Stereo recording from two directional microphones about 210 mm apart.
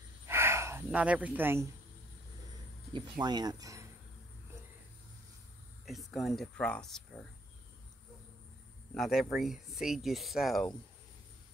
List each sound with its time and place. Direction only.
0.3 s gasp: 10° right (ahead or behind)
2.9 s speech: 20° right (ahead or behind)
5.9 s speech: centre (ahead or behind)
8.9 s speech: centre (ahead or behind)